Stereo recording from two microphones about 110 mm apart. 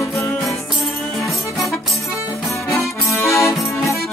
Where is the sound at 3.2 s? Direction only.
25° left (ahead or behind).